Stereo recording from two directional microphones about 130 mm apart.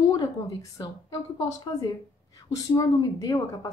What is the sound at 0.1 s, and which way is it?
A woman's voice, 30° left (ahead or behind).